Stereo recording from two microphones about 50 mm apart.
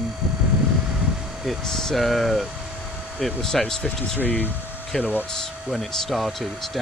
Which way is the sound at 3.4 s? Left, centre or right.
Centre.